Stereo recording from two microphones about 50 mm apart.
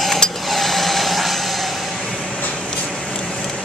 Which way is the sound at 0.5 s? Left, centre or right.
Centre.